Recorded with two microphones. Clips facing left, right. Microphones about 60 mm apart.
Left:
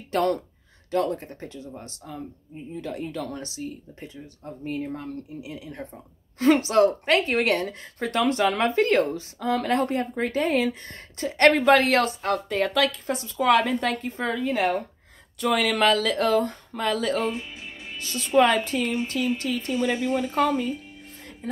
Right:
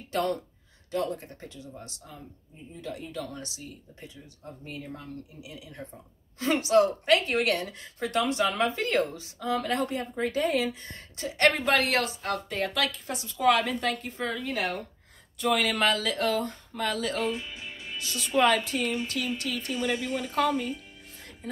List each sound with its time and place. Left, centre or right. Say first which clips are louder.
0.1 s speech: left 5 dB; left
15.3 s speech: left 3 dB; left